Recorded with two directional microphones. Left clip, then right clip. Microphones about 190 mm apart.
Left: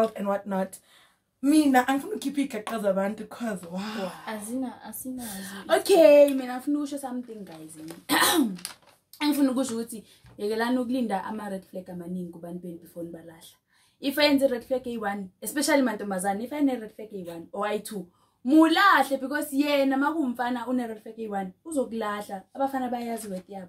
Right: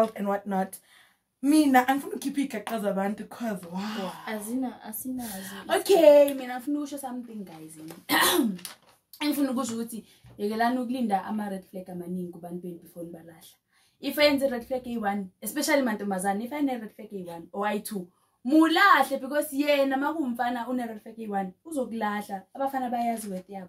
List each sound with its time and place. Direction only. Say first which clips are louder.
0.0 s speech: even; centre (ahead or behind)
4.6 s a woman's voice: right 1 dB; 20° right (ahead or behind)
5.1 s a woman's voice: right 2 dB; 25° left (ahead or behind)
9.6 s a woman's voice: left 2 dB; 20° left (ahead or behind)
13.0 s a woman's voice: left 3 dB; 15° left (ahead or behind)